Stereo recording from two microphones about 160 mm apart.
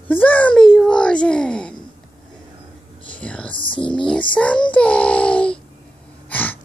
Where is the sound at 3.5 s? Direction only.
30° left (ahead or behind).